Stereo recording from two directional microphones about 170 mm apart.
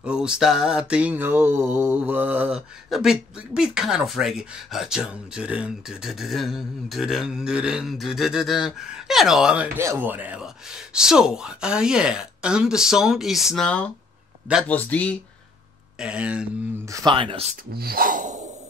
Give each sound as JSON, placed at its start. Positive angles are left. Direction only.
{"t": 0.0, "sound": "mantra", "side_deg": -5}
{"t": 14.7, "sound": "speech", "side_deg": 10}
{"t": 16.0, "sound": "mantra", "side_deg": -5}
{"t": 16.8, "sound": "speech", "side_deg": -20}
{"t": 17.1, "sound": "speech", "side_deg": -30}
{"t": 17.7, "sound": "gasp", "side_deg": -60}